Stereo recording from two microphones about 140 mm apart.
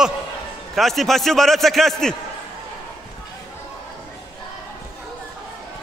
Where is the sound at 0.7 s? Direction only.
Centre (ahead or behind).